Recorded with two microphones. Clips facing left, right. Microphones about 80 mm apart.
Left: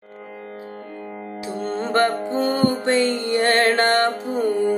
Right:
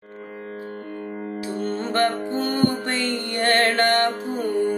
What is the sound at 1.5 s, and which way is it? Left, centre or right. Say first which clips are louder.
Music: left 3 dB; left.